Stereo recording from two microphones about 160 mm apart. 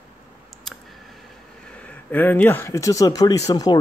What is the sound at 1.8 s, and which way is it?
Speech, 10° left (ahead or behind).